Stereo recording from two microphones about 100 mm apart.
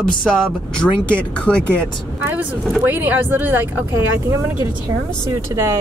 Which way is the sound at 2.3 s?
15° right (ahead or behind).